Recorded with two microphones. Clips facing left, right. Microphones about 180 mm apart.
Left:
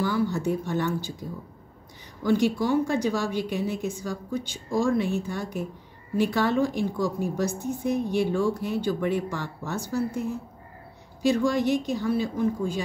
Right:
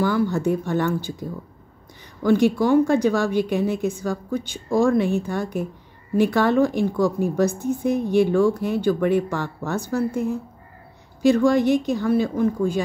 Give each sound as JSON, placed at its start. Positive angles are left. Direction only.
{"t": 0.0, "sound": "a woman's voice", "side_deg": -55}
{"t": 2.2, "sound": "a woman's voice", "side_deg": -55}
{"t": 11.2, "sound": "a woman's voice", "side_deg": -55}